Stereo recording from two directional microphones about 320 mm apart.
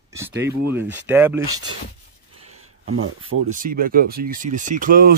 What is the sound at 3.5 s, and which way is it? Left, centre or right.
Speech, right.